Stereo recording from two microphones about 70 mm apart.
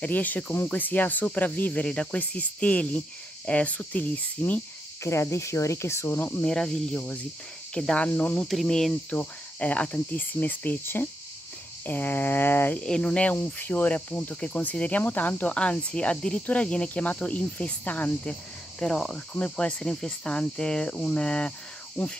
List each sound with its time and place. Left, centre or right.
0.0 s speech: left
5.0 s speech: left
6.4 s cricket: centre
8.4 s speech: centre
8.6 s cricket: centre
9.1 s speech: centre
12.7 s cricket: centre
13.4 s speech: left
18.8 s cricket: centre